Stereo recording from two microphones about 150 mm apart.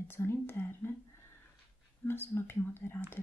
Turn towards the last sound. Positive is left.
turn(degrees=15)  # may be behind; listen again after turning